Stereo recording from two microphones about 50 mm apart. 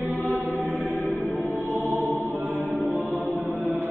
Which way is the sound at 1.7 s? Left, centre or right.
Right.